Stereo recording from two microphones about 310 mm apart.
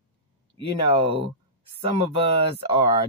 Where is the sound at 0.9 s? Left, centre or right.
Centre.